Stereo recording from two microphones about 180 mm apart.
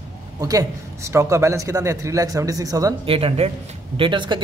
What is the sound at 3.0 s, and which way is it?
A man's voice, 30° right (ahead or behind).